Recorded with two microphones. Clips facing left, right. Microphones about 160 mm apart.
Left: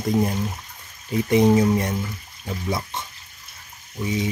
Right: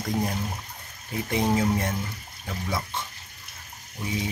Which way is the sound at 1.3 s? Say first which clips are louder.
Left 7 dB; 20° left (ahead or behind).